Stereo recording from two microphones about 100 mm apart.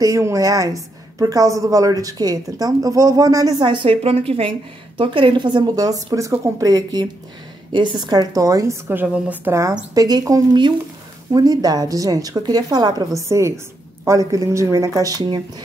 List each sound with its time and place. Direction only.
0.0 s a woman's voice: 30° right (ahead or behind)
3.6 s a woman's voice: 60° right (ahead or behind)
4.9 s a woman's voice: 60° right (ahead or behind); by 8.7 s 35° right (ahead or behind)
8.8 s a woman's voice: 20° right (ahead or behind)
9.5 s a woman's voice: 30° right (ahead or behind)
13.3 s a woman's voice: 30° right (ahead or behind)